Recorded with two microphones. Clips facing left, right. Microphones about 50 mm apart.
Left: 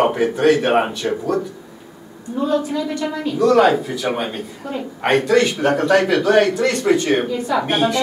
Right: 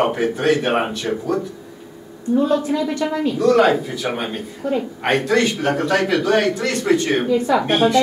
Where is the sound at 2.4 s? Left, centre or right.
Centre.